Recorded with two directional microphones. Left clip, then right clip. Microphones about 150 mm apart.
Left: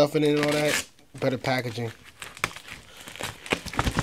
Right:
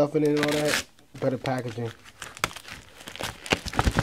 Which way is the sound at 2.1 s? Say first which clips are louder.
Right 1 dB; 35° right (ahead or behind).